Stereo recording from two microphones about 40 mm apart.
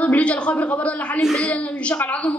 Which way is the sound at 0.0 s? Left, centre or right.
Left.